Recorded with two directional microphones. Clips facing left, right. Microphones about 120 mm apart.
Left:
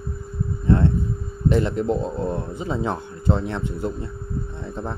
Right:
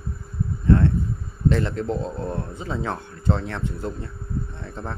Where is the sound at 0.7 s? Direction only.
20° left (ahead or behind).